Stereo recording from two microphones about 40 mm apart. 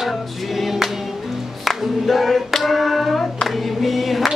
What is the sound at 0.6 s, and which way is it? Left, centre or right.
Choir, centre.